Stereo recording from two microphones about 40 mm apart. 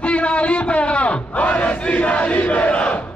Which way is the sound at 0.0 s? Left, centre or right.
Left.